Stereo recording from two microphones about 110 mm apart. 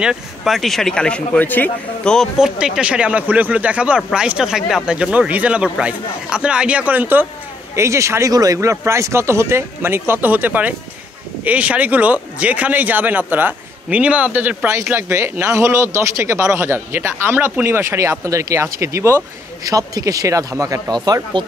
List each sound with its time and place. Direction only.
0.0 s speech: 5° right (ahead or behind); by 2.1 s 15° left (ahead or behind)
2.1 s a man's voice: 5° right (ahead or behind); by 21.5 s 45° right (ahead or behind)